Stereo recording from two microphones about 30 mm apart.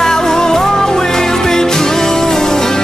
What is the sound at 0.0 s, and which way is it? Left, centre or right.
Music, centre.